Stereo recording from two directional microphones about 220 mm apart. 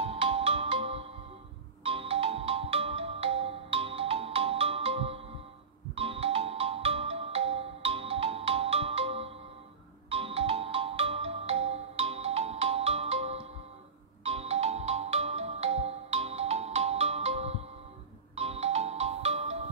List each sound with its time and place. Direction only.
0.0 s music: 25° right (ahead or behind)
1.8 s ringtone: 25° right (ahead or behind)
14.2 s music: 30° right (ahead or behind)
18.3 s ringtone: 30° right (ahead or behind)